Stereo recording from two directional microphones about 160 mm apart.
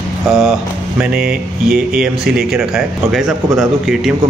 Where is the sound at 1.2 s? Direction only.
65° right (ahead or behind).